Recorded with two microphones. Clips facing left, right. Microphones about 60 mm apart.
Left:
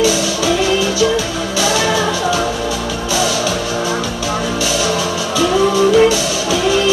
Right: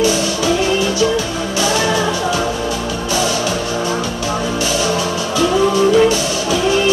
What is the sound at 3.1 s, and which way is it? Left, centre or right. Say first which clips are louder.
Music: left 1 dB; right.